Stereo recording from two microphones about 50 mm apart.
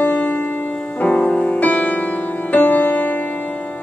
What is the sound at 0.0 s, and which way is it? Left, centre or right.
Music, left.